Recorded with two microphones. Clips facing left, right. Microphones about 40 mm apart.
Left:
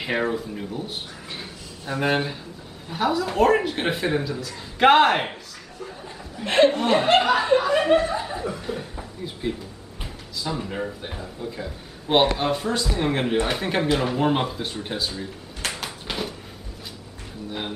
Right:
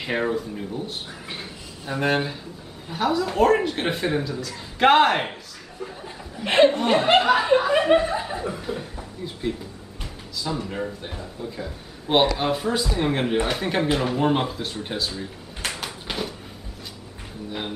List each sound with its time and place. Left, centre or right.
0.0 s speech: centre
1.3 s a sound: centre
2.9 s speech: centre
5.8 s speech: centre
6.7 s speech: centre
17.5 s speech: centre